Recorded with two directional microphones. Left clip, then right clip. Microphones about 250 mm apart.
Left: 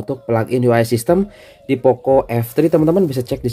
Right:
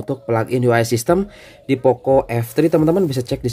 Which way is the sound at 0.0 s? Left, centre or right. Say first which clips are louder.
Left 1 dB; centre.